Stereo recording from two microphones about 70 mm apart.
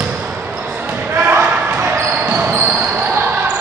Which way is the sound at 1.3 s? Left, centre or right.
Right.